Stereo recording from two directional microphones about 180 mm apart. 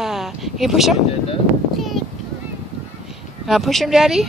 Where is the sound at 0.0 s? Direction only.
Centre (ahead or behind).